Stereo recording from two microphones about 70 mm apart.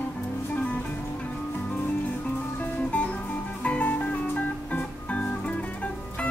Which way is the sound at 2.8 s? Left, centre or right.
Centre.